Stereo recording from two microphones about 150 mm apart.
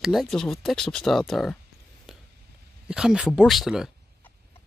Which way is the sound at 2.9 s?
5° right (ahead or behind).